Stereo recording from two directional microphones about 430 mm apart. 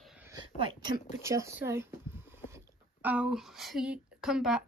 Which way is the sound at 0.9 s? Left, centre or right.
Centre.